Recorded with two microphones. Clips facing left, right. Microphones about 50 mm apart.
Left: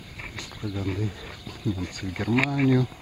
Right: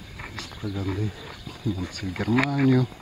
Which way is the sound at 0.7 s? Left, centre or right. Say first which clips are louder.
Even; centre.